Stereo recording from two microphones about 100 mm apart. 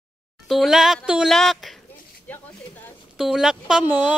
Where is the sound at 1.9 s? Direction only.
20° left (ahead or behind).